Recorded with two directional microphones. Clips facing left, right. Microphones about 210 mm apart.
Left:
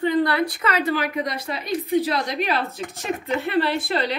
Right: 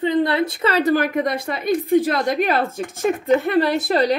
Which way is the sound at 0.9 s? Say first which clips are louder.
Right 6 dB; 50° right (ahead or behind).